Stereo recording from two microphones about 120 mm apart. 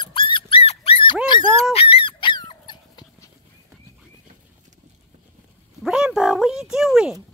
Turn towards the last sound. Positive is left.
turn(degrees=-5)  # may be behind; listen again after turning